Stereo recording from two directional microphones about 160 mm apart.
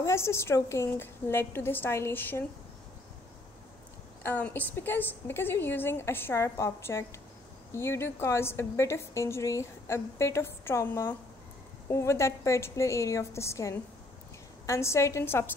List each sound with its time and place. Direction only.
0.0 s a woman's voice: 15° left (ahead or behind)
4.2 s a woman's voice: 10° left (ahead or behind)